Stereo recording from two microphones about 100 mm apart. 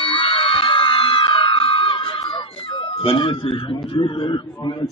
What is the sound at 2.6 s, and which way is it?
A man's voice, 60° left (ahead or behind).